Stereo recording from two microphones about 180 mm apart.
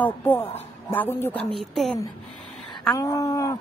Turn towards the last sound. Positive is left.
turn(degrees=20)  # may be behind; listen again after turning